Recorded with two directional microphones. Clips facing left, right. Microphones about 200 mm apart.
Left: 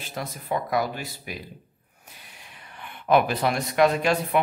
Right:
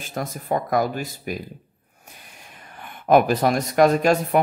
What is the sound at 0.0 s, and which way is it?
Speech, 50° right (ahead or behind).